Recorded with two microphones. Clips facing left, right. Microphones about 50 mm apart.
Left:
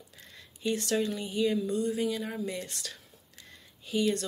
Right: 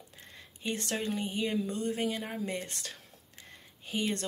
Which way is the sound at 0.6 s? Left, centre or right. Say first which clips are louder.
Left 5 dB; right.